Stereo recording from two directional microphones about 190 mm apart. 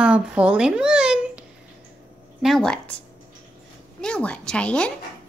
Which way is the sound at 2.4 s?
Centre (ahead or behind).